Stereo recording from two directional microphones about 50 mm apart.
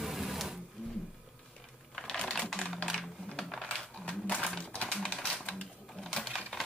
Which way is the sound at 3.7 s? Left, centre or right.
Left.